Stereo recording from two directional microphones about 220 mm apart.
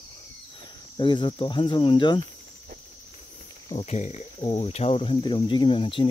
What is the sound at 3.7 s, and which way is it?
Speech, 30° left (ahead or behind).